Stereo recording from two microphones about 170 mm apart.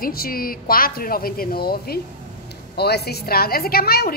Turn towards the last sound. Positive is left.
turn(degrees=65)  # may be behind; listen again after turning